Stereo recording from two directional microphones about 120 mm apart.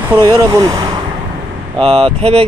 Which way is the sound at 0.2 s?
30° right (ahead or behind).